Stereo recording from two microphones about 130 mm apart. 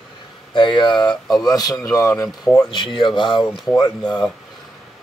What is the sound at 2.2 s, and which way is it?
Speech, 5° left (ahead or behind).